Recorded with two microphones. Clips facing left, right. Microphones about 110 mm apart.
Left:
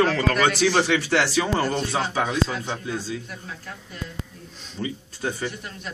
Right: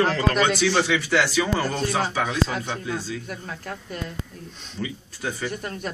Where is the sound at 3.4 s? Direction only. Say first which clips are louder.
Right 4 dB; 55° right (ahead or behind).